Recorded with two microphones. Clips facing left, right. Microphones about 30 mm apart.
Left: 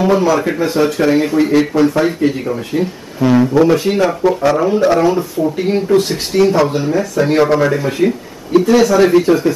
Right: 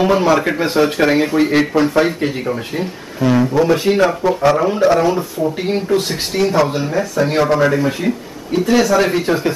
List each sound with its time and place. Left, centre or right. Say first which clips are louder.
0.0 s speech: left 1 dB; right
1.2 s speech: left 2 dB; centre
3.2 s speech: left 3 dB; centre
3.7 s speech: even; centre
5.6 s speech: left 5 dB; centre
9.1 s speech: left 5 dB; centre